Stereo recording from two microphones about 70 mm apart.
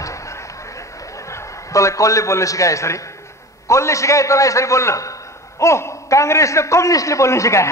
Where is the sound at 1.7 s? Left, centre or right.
Left.